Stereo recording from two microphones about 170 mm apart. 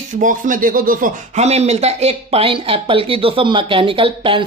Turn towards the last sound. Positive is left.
turn(degrees=-30)  # may be behind; listen again after turning